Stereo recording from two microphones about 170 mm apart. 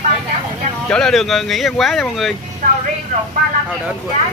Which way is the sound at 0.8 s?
5° left (ahead or behind).